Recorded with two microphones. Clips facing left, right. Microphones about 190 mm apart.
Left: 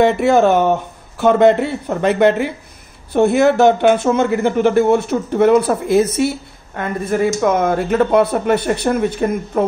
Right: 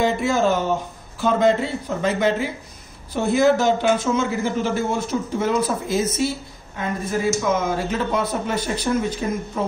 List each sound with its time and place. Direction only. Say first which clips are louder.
0.0 s speech: left 7 dB; 65° left (ahead or behind)